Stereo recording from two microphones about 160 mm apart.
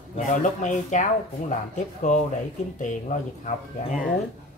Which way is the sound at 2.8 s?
45° left (ahead or behind).